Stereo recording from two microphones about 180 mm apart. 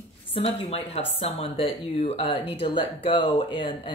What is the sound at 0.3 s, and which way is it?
Speech, 35° left (ahead or behind).